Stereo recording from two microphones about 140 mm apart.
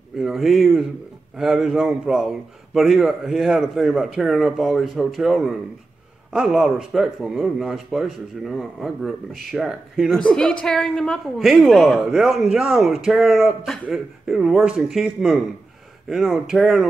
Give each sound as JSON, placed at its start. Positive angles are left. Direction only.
{"t": 0.2, "sound": "a woman's voice", "side_deg": 0}